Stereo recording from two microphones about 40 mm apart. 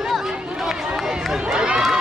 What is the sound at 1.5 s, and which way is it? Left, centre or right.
Run, right.